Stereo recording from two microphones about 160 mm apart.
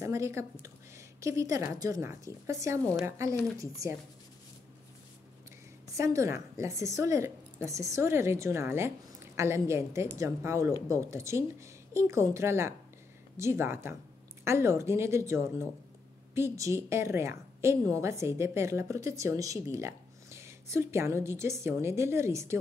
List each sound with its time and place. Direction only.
0.0 s speech: 20° right (ahead or behind)
5.9 s a woman's voice: 20° right (ahead or behind)